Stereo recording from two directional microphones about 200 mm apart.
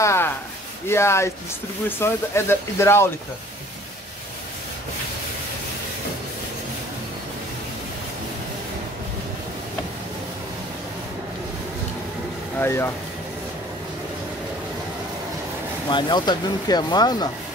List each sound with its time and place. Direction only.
0.0 s a sound: 15° left (ahead or behind)
0.8 s speech: 15° left (ahead or behind)
12.5 s speech: 10° left (ahead or behind)
15.9 s speech: 20° left (ahead or behind)